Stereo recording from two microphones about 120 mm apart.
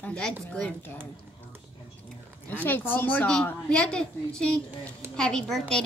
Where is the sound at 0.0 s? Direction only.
10° left (ahead or behind).